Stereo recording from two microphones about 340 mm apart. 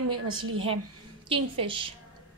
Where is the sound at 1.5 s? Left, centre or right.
Centre.